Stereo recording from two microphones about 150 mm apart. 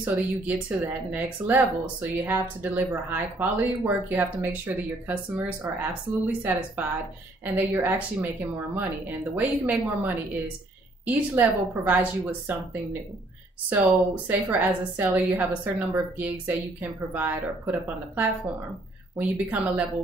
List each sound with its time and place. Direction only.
0.0 s speech: 10° right (ahead or behind)
13.7 s speech: 10° right (ahead or behind)